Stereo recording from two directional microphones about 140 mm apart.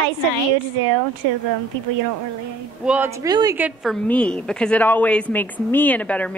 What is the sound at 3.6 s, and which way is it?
Speech, 5° right (ahead or behind).